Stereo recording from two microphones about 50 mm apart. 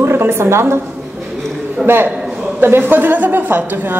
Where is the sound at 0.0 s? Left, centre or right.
Right.